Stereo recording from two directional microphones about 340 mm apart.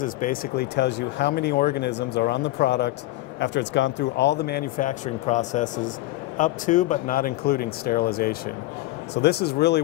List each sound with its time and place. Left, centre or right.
0.0 s speech: left